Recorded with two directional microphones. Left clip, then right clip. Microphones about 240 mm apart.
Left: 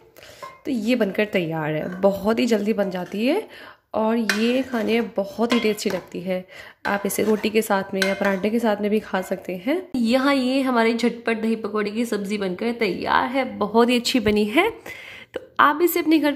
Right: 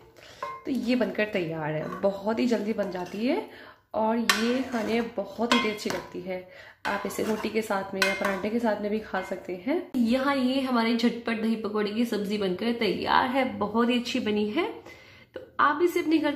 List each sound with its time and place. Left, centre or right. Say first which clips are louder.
0.7 s speech: left 6 dB; left
13.7 s speech: left 9 dB; left